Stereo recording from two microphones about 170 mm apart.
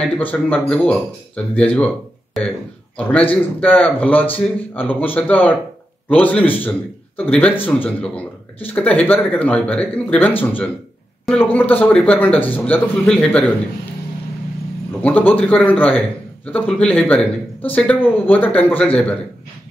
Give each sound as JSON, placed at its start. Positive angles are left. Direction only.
{"t": 0.0, "sound": "speech", "side_deg": 10}
{"t": 3.0, "sound": "speech", "side_deg": 10}
{"t": 15.0, "sound": "speech", "side_deg": 10}